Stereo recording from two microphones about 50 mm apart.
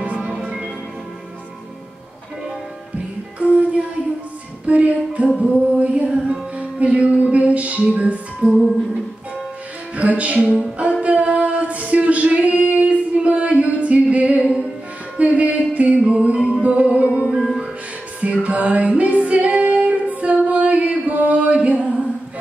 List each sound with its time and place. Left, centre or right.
0.0 s music: right
3.3 s music: right
9.9 s music: right
17.3 s music: centre
18.2 s music: right